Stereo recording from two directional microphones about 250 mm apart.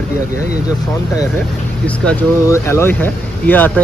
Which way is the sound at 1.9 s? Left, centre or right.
Centre.